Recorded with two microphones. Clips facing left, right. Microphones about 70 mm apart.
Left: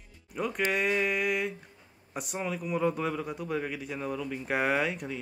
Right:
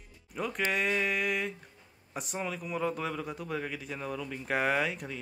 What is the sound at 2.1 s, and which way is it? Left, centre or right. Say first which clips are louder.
Speech: left 2 dB; centre.